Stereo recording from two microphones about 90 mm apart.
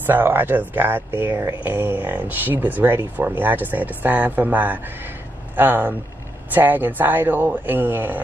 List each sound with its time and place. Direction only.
0.0 s speech: 20° right (ahead or behind)